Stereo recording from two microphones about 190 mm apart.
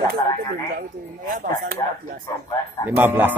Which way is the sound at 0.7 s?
45° right (ahead or behind).